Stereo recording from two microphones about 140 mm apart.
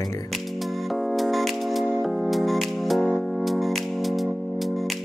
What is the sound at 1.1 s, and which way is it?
Music, centre (ahead or behind).